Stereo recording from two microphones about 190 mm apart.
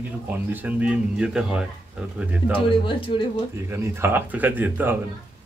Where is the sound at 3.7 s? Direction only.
15° right (ahead or behind).